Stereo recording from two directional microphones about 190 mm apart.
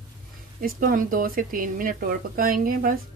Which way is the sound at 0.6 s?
45° right (ahead or behind).